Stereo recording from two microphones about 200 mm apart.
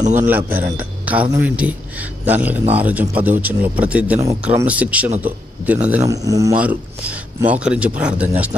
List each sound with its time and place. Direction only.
0.0 s a man's voice: 35° right (ahead or behind)
0.3 s speech: 10° right (ahead or behind)
0.7 s a sound: 5° right (ahead or behind)
1.3 s speech: 10° right (ahead or behind)